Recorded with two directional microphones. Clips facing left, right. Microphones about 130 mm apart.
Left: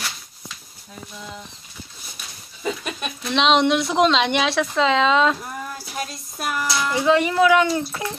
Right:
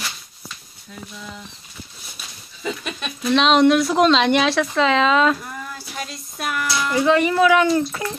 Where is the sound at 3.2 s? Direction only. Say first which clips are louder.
Right 3 dB; 15° left (ahead or behind).